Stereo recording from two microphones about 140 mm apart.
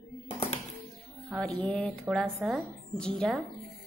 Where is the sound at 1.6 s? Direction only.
10° left (ahead or behind).